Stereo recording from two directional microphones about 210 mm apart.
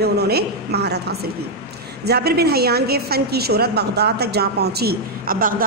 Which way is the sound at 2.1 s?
50° right (ahead or behind).